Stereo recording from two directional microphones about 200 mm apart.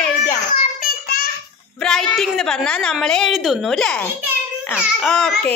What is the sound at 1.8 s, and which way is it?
A woman's voice, centre (ahead or behind).